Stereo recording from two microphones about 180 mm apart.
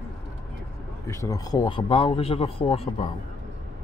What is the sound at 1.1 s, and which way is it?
Speech, 15° left (ahead or behind).